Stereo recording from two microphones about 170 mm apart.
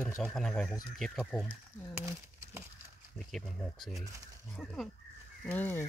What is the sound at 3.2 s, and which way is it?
Speech, centre (ahead or behind).